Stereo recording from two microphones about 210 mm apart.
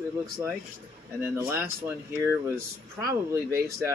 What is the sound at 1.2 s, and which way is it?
Speech, 10° right (ahead or behind).